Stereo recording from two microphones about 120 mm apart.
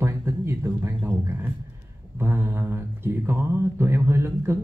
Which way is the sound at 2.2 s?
20° right (ahead or behind).